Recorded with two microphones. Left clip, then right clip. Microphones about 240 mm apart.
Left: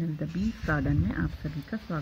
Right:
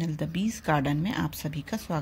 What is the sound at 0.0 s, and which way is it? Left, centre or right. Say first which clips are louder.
A woman's voice: right 2 dB; centre.